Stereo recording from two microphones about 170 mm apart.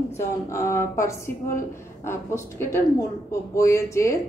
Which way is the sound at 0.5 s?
15° left (ahead or behind).